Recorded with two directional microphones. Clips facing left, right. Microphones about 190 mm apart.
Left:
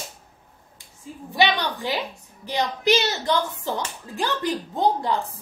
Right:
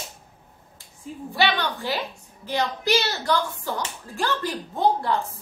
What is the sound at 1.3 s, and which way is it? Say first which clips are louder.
Speech: left 2 dB; 15° left (ahead or behind).